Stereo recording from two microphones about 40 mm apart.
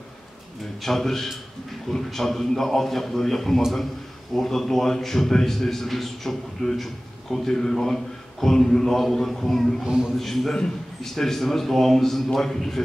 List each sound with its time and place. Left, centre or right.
0.7 s a man's voice: centre
9.8 s a man's voice: centre
10.1 s a man's voice: centre